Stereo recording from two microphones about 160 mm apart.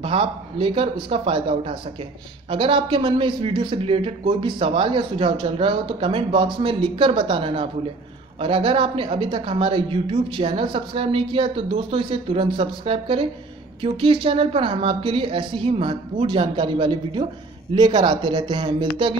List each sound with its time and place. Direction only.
0.0 s speech: 35° right (ahead or behind)